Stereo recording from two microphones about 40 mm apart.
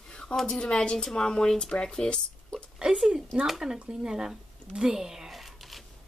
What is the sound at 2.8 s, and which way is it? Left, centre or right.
Speech, right.